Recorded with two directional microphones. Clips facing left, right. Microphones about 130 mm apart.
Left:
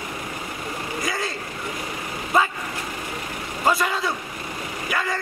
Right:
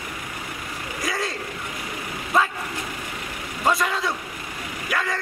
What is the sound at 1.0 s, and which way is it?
Vehicle, centre (ahead or behind).